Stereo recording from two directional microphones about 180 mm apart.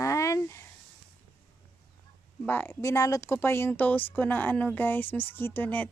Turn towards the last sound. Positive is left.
turn(degrees=10)  # may be behind; listen again after turning